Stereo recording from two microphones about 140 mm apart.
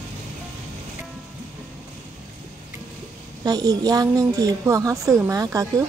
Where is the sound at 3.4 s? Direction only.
25° right (ahead or behind).